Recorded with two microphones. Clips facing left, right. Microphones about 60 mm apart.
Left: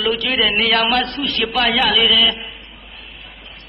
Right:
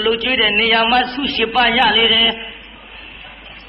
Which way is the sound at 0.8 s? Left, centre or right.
Centre.